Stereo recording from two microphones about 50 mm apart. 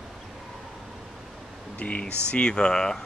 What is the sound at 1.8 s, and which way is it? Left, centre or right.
Speech, left.